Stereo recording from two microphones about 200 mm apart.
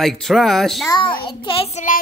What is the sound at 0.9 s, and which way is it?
A child's voice, 20° left (ahead or behind).